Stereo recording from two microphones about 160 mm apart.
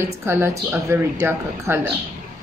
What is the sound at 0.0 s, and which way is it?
Speech, 15° right (ahead or behind).